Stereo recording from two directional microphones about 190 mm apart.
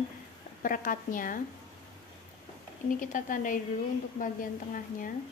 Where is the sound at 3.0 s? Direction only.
45° left (ahead or behind).